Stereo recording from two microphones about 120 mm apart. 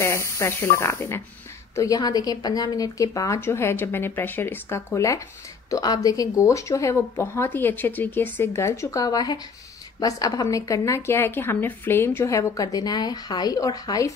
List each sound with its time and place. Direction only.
0.0 s speech: 25° left (ahead or behind)
1.8 s a woman's voice: 30° left (ahead or behind)